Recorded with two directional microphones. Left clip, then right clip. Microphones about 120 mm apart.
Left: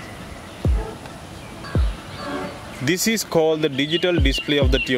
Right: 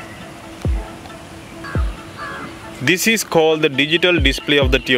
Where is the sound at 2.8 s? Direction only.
20° right (ahead or behind).